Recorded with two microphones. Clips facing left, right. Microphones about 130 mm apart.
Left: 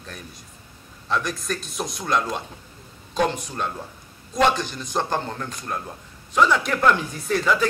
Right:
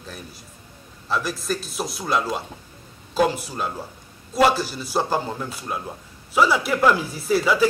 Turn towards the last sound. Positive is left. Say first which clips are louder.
# right 3 dB
turn(degrees=-5)  # may be behind; listen again after turning